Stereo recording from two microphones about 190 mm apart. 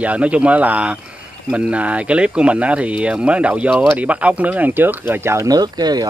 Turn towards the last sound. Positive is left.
turn(degrees=-20)  # may be behind; listen again after turning